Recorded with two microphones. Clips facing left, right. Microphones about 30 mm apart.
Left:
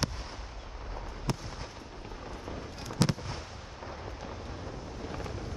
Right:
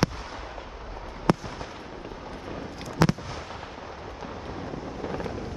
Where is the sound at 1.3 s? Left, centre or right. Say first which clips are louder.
Right 12 dB; right.